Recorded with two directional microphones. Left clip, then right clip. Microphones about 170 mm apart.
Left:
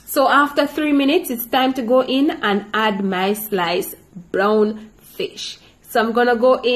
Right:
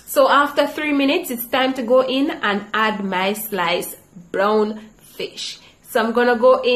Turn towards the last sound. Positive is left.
turn(degrees=30)  # may be behind; listen again after turning